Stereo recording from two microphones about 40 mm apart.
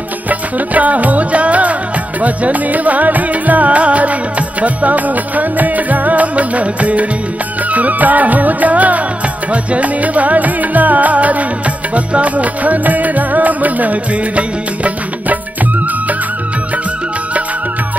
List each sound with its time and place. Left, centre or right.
0.3 s music: right